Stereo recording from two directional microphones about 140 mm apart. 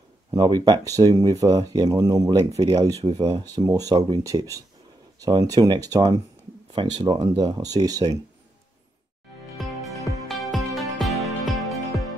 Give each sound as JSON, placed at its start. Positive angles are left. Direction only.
{"t": 0.3, "sound": "speech", "side_deg": -30}
{"t": 9.6, "sound": "music", "side_deg": 0}